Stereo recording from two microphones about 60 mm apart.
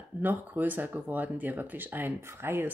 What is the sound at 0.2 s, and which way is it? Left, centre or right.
Speech, right.